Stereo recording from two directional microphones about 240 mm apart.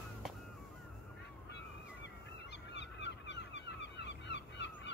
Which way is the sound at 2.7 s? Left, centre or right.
Left.